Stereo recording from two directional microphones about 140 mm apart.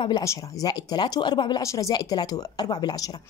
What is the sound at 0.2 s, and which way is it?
A woman's voice, 20° left (ahead or behind).